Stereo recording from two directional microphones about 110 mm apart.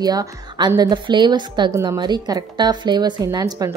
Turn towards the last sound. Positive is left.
turn(degrees=-35)  # may be behind; listen again after turning